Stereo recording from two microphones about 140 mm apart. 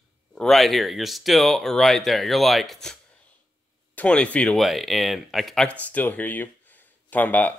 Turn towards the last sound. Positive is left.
turn(degrees=10)  # may be behind; listen again after turning